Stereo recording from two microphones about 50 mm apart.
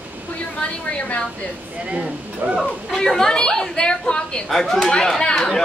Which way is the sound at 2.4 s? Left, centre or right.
Right.